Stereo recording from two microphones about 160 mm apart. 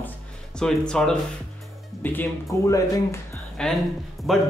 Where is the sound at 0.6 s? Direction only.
5° left (ahead or behind).